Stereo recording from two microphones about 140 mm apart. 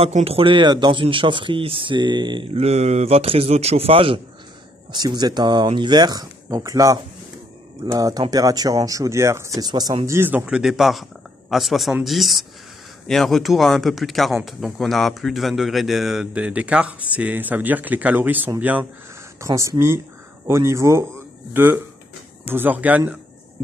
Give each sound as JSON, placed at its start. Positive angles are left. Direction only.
{"t": 0.0, "sound": "speech", "side_deg": -45}
{"t": 4.9, "sound": "speech", "side_deg": -30}